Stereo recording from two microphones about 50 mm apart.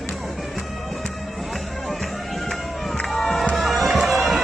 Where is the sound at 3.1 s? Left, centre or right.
Centre.